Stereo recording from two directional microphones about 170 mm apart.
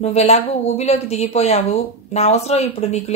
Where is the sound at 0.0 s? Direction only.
40° left (ahead or behind).